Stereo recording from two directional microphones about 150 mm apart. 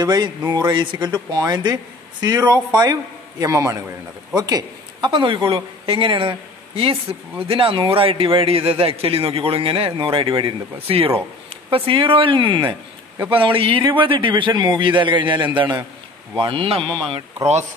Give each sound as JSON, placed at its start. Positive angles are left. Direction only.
{"t": 0.0, "sound": "a man's voice", "side_deg": -30}
{"t": 16.8, "sound": "speech", "side_deg": 5}